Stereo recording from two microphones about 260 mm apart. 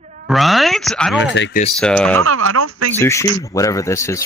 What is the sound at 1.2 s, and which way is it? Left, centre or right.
Speech, left.